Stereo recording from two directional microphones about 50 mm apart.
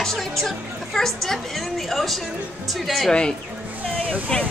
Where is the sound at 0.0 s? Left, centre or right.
Centre.